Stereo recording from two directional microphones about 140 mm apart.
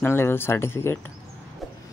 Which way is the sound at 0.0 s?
15° left (ahead or behind).